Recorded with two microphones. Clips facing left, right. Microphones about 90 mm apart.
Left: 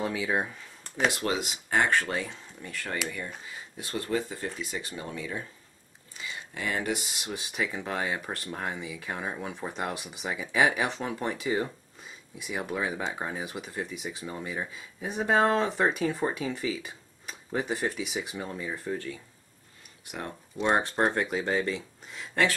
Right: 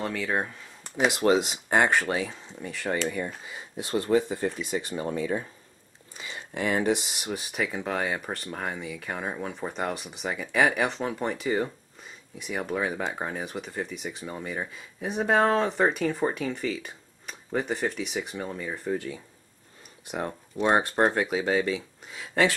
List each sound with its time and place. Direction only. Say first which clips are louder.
0.0 s a sound: even; 5° left (ahead or behind)
1.2 s speech: right 8 dB; 30° right (ahead or behind)
2.0 s speech: right 4 dB; 10° right (ahead or behind); by 4.8 s 25° right (ahead or behind)
4.9 s speech: right 9 dB; 35° right (ahead or behind)
7.2 s speech: right 2 dB; 5° right (ahead or behind)
20.2 s speech: right 5 dB; 15° right (ahead or behind)
21.0 s speech: right 3 dB; centre (ahead or behind)